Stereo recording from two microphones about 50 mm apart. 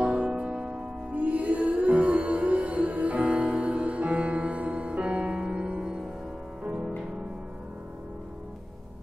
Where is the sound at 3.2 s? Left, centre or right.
Centre.